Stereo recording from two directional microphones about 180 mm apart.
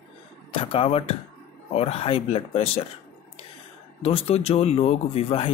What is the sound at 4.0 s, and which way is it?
A man's voice, 35° left (ahead or behind).